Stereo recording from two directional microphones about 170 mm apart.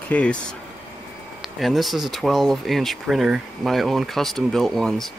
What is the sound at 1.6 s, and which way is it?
Speech, centre (ahead or behind).